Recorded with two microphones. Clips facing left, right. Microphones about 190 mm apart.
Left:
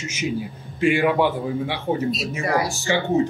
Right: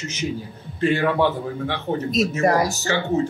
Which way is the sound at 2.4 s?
45° right (ahead or behind).